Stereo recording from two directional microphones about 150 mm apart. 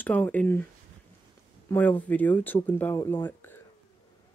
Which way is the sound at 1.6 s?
10° left (ahead or behind).